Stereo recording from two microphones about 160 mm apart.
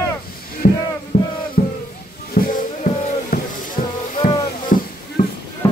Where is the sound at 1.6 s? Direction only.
65° left (ahead or behind).